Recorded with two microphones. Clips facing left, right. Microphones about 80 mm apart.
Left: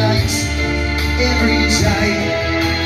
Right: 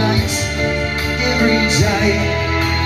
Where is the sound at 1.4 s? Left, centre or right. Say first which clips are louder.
Right 2 dB; right.